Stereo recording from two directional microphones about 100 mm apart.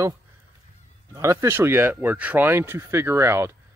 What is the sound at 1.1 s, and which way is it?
Speech, 30° right (ahead or behind).